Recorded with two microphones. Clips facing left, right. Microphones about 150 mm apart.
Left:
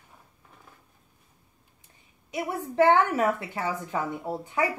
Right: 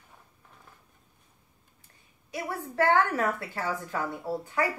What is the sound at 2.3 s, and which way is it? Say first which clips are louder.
A woman's voice: left 3 dB; 20° left (ahead or behind).